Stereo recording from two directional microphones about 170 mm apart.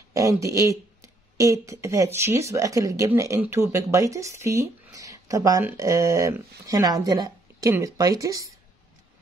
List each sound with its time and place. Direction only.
0.1 s speech: 20° right (ahead or behind)